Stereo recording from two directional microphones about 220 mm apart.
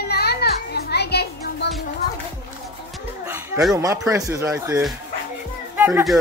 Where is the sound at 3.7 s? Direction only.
15° right (ahead or behind).